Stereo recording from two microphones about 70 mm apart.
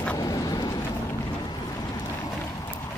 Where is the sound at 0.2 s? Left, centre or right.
Left.